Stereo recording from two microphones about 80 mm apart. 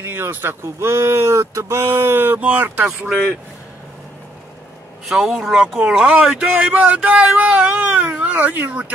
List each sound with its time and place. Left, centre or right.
0.0 s speech: right
5.0 s a man's voice: centre